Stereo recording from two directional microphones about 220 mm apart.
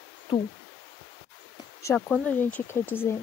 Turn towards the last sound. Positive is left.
turn(degrees=10)  # may be behind; listen again after turning